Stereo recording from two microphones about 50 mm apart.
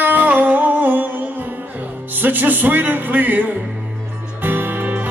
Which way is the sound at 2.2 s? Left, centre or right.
Right.